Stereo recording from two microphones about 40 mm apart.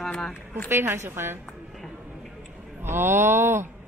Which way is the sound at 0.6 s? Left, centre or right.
Right.